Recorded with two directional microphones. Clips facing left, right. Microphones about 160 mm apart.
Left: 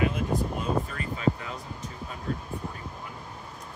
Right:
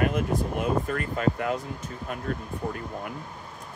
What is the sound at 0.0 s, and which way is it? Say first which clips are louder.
Speech: right 2 dB; 55° right (ahead or behind).